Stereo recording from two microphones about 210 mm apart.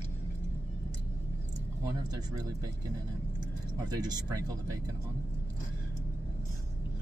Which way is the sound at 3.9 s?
20° right (ahead or behind).